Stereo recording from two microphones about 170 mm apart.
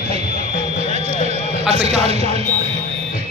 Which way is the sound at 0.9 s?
40° right (ahead or behind).